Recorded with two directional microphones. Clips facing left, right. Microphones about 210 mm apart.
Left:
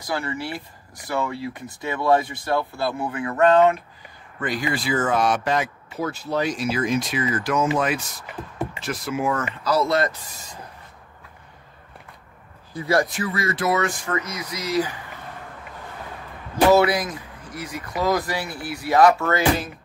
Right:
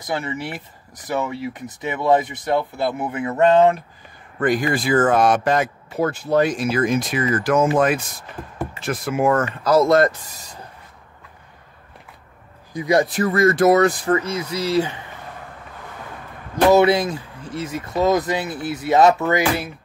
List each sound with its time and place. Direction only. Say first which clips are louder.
0.0 s speech: right 2 dB; 20° right (ahead or behind)
4.4 s speech: right 6 dB; 50° right (ahead or behind)
12.7 s speech: right 3 dB; 20° right (ahead or behind)
13.1 s speech: right 9 dB; 45° right (ahead or behind); by 15.0 s 30° right (ahead or behind)
16.7 s speech: right 3 dB; 25° right (ahead or behind)